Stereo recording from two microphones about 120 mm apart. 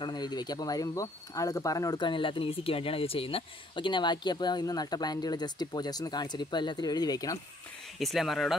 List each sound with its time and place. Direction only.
0.0 s speech: 35° left (ahead or behind)
8.0 s speech: centre (ahead or behind)